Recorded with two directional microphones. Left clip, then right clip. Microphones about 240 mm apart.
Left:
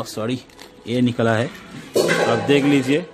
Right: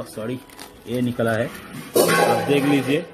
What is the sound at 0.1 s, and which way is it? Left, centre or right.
Speech, left.